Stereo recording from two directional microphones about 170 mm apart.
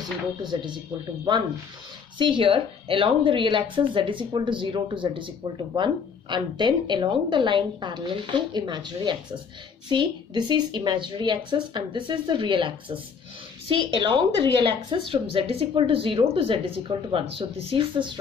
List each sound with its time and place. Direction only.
0.4 s a woman's voice: 25° right (ahead or behind)
2.1 s a woman's voice: 30° right (ahead or behind)